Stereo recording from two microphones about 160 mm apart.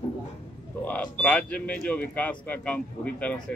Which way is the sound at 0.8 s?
10° left (ahead or behind).